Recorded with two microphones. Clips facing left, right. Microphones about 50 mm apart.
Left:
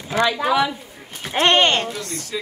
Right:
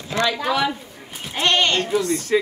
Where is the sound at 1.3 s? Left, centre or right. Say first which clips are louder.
Left 3 dB; left.